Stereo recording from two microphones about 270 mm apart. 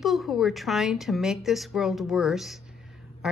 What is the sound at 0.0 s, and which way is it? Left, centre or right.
A woman's voice, centre.